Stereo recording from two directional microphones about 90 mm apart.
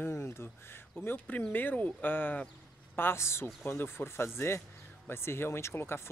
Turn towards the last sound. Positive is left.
turn(degrees=25)  # may be behind; listen again after turning